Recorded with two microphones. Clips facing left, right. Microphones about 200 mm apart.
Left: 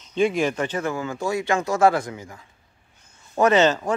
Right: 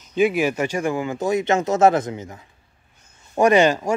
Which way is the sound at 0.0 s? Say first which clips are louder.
Right 2 dB; 5° right (ahead or behind).